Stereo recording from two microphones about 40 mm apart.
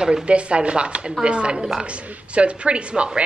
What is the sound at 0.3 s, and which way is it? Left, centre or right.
A woman's voice, right.